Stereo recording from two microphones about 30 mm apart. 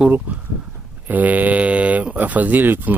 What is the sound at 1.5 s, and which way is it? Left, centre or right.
Mantra, right.